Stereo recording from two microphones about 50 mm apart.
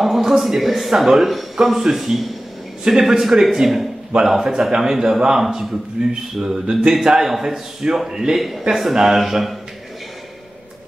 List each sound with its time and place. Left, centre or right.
0.0 s a man's voice: centre
8.4 s a man's voice: centre